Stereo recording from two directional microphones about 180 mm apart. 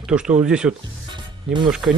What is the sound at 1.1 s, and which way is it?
Music, 25° right (ahead or behind).